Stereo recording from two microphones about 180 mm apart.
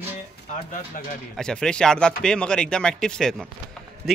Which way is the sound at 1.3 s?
5° left (ahead or behind).